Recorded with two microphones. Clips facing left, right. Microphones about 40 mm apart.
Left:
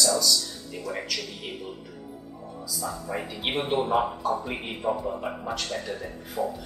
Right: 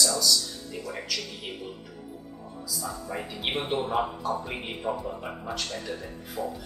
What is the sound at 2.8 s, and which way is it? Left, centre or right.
Speech, centre.